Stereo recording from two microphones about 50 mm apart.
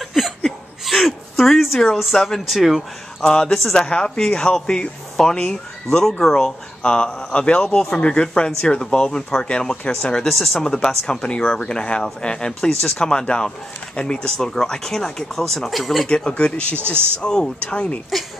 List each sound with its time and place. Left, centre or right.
0.0 s laughter: centre
0.5 s a sound: centre
2.1 s speech: centre
3.2 s speech: centre
3.9 s speech: left
10.2 s speech: centre
16.3 s speech: left